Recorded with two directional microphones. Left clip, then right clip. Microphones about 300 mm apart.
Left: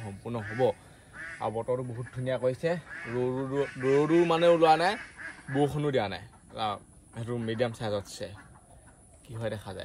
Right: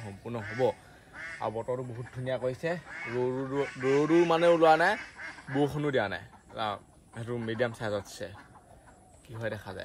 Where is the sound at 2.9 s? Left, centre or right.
Right.